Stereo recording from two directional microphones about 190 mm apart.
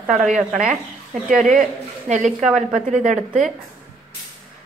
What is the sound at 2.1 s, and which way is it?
Speech, 40° right (ahead or behind).